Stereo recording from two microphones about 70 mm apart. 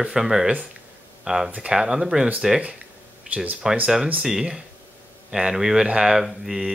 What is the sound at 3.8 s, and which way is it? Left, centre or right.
Speech, centre.